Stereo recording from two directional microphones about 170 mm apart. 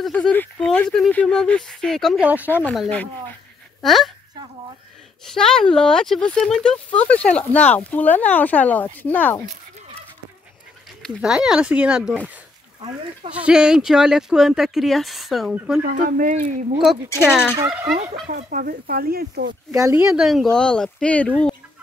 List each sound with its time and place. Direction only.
0.0 s speech: 5° left (ahead or behind)
2.4 s speech: 10° left (ahead or behind)
5.2 s speech: 5° left (ahead or behind)
11.0 s speech: 5° right (ahead or behind)
13.3 s speech: 5° right (ahead or behind)
15.9 s speech: 55° right (ahead or behind)
16.8 s speech: centre (ahead or behind)
18.3 s speech: 55° right (ahead or behind)
19.7 s speech: 20° right (ahead or behind)
20.1 s speech: centre (ahead or behind)